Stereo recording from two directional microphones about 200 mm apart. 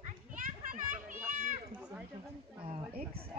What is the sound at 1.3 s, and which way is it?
Cat, 40° right (ahead or behind).